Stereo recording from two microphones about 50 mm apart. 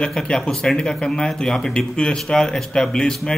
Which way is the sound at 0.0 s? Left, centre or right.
Centre.